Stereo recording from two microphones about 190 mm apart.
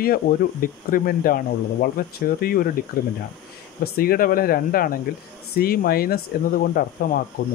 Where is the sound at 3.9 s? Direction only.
50° left (ahead or behind).